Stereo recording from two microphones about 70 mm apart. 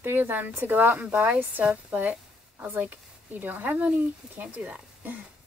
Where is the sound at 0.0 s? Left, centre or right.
Right.